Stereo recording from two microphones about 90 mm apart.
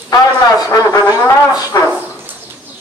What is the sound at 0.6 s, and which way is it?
Brass instrument, 45° left (ahead or behind).